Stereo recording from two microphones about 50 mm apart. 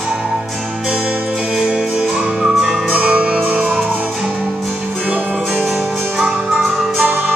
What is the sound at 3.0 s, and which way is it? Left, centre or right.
Music, right.